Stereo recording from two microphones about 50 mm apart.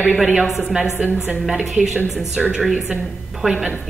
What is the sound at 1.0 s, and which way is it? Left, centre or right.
Speech, right.